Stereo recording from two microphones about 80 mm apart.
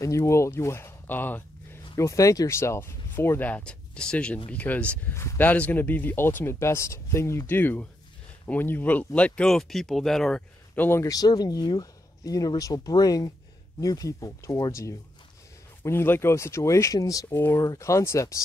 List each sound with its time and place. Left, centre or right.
0.0 s speech: left
2.0 s speech: left; by 5.1 s centre
5.1 s speech: left
5.4 s speech: left
9.5 s speech: centre
10.7 s a sound: left
11.0 s speech: left
17.3 s speech: left